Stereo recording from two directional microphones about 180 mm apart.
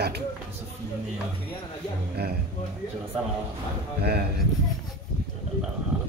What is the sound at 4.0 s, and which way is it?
Speech, 60° right (ahead or behind).